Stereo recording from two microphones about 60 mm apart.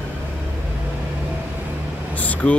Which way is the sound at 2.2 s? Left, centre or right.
Left.